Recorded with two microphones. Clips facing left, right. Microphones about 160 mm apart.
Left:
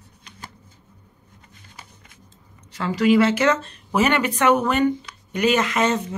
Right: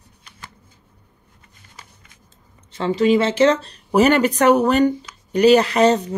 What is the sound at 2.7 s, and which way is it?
Speech, 25° right (ahead or behind).